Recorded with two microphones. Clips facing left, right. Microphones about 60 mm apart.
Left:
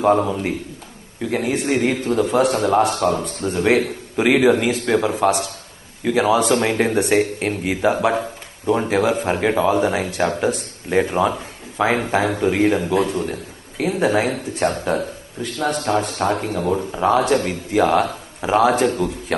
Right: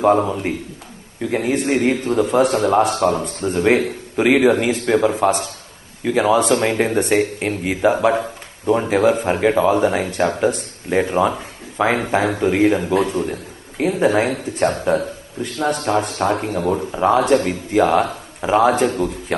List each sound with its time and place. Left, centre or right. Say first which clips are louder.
0.0 s a man's voice: right 1 dB; centre